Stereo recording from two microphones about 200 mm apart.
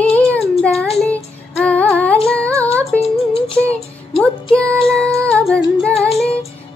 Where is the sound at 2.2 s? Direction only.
5° left (ahead or behind).